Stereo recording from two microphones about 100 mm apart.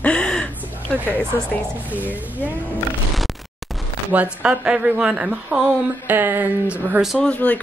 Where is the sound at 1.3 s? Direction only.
30° left (ahead or behind).